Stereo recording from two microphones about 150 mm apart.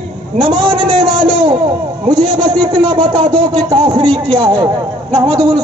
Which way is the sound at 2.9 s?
30° right (ahead or behind).